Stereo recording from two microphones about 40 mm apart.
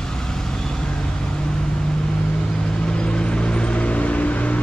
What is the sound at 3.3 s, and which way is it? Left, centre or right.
Vehicle, left.